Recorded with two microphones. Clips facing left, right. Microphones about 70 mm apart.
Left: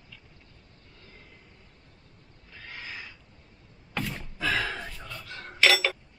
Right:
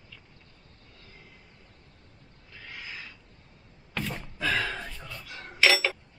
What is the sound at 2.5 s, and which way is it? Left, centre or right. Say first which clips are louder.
Owl: left 1 dB; centre.